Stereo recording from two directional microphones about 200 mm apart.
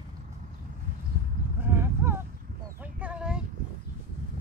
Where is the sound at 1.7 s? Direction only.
10° right (ahead or behind).